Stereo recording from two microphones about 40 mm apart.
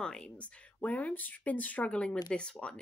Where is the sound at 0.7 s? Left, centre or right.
Left.